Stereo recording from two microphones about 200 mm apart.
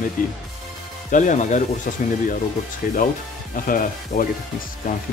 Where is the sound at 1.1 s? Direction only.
40° left (ahead or behind).